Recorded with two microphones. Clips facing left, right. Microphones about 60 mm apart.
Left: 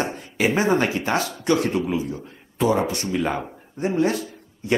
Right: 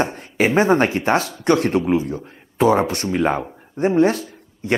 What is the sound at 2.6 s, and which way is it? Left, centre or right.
Speech, right.